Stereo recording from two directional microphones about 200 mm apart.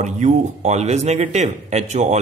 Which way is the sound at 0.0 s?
35° right (ahead or behind).